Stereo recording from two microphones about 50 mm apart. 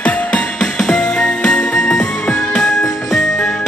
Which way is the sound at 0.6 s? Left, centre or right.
Centre.